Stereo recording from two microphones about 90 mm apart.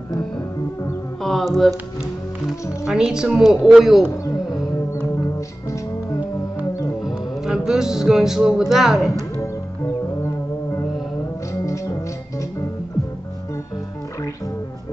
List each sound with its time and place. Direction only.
1.2 s speech: centre (ahead or behind)
2.8 s a woman's voice: 10° right (ahead or behind)
7.1 s music: 5° right (ahead or behind)
11.6 s organ: 35° left (ahead or behind)